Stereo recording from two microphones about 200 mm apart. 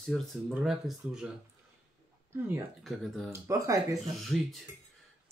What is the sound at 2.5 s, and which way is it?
Speech, centre (ahead or behind).